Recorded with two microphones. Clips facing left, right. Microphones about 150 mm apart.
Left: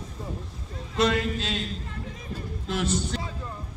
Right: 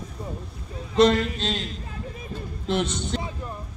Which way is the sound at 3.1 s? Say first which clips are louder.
Right 3 dB; 20° right (ahead or behind).